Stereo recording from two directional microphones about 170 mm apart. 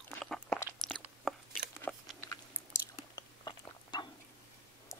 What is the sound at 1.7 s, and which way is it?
Biting, 15° left (ahead or behind).